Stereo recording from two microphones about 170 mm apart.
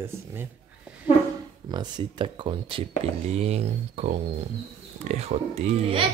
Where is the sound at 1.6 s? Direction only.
25° right (ahead or behind).